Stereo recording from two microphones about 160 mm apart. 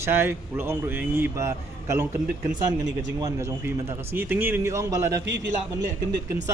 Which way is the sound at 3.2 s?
20° right (ahead or behind).